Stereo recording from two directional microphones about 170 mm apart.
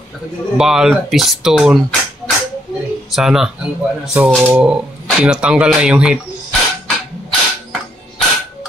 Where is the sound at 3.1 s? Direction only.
5° right (ahead or behind).